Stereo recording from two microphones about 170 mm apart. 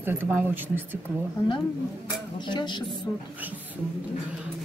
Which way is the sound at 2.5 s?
25° left (ahead or behind).